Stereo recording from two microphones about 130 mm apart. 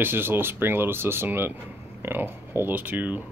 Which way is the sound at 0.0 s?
15° right (ahead or behind).